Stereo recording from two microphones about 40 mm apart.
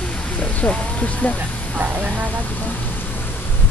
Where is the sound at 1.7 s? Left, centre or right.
Right.